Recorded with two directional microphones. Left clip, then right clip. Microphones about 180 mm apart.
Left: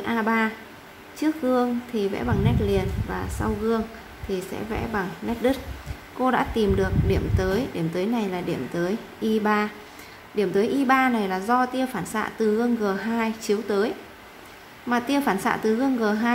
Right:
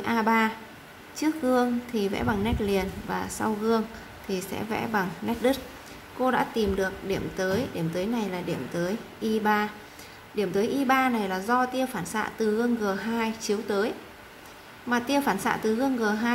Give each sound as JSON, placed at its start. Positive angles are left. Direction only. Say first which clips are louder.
{"t": 0.0, "sound": "a woman's voice", "louder": "even", "side_deg": -5}
{"t": 6.1, "sound": "a woman's voice", "louder": "left 2 dB", "side_deg": 10}